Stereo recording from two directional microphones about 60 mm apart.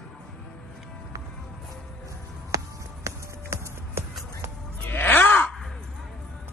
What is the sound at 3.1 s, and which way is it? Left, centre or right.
Music, right.